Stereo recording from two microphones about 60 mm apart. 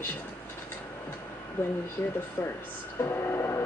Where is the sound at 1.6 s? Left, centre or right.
Left.